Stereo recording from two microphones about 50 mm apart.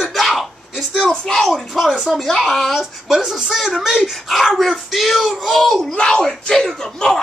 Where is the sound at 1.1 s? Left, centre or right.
Centre.